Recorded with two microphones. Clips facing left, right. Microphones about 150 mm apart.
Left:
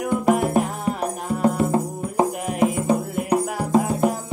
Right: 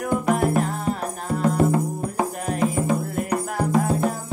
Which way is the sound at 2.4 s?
15° left (ahead or behind).